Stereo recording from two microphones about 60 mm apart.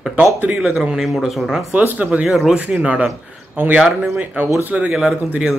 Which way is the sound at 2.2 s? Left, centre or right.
Centre.